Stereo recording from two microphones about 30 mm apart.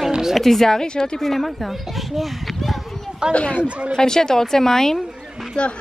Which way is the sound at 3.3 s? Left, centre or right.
Left.